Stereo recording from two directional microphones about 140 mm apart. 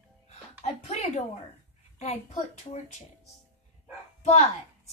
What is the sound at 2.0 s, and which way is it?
Speech, 55° left (ahead or behind).